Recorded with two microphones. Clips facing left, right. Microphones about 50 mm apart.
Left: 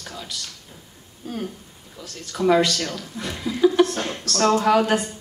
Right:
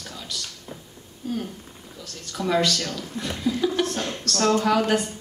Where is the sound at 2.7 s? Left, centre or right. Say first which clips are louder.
Left 1 dB; left.